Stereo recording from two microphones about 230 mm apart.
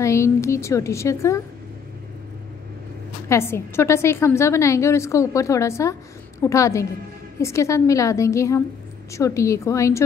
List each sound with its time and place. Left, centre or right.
0.0 s a woman's voice: centre
3.3 s a woman's voice: centre